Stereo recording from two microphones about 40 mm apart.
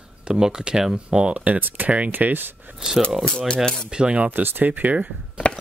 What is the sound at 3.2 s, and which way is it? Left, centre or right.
Speech, left.